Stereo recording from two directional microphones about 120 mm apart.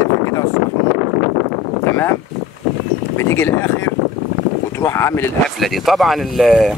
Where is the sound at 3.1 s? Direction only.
20° left (ahead or behind).